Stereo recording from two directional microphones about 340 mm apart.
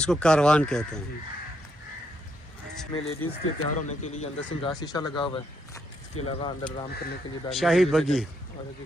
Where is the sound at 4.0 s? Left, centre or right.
Centre.